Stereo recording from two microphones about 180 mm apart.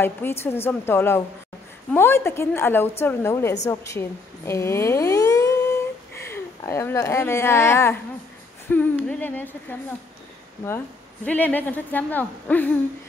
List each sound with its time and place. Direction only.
0.0 s a woman's voice: 15° left (ahead or behind)
11.2 s a woman's voice: 10° left (ahead or behind)